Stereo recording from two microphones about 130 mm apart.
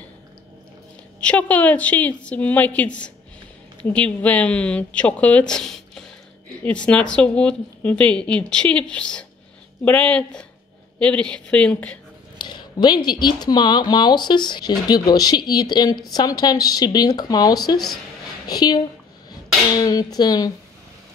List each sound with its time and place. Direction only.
1.2 s a woman's voice: 10° left (ahead or behind)
12.4 s speech: 35° left (ahead or behind)